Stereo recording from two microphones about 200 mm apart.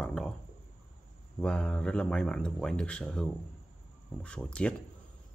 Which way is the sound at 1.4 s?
5° left (ahead or behind).